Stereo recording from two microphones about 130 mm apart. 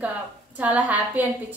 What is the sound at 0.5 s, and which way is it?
Speech, 10° right (ahead or behind).